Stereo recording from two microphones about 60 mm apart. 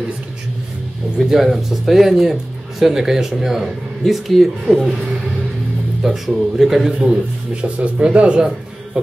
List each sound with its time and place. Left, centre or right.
1.1 s speech: centre
6.0 s speech: centre
7.6 s speech: centre
9.0 s music: centre